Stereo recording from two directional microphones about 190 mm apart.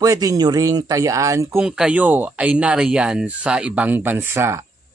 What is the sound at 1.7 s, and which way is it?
Speech, 5° right (ahead or behind).